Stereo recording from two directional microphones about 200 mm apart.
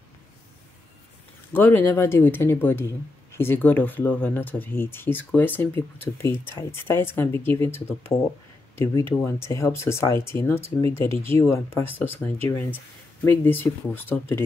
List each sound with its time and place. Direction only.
1.5 s speech: 10° left (ahead or behind)